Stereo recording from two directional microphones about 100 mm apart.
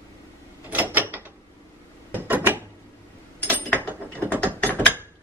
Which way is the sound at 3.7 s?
20° right (ahead or behind).